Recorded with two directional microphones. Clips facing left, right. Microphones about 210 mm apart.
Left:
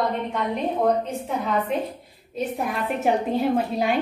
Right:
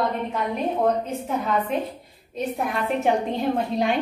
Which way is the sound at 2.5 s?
Centre (ahead or behind).